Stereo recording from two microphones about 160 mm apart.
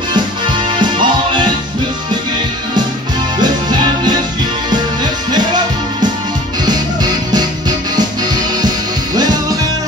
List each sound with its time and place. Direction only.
0.7 s music: 30° right (ahead or behind)